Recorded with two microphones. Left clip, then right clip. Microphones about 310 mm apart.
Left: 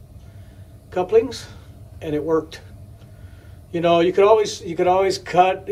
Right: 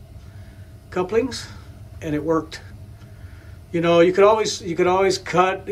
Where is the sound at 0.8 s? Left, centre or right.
Centre.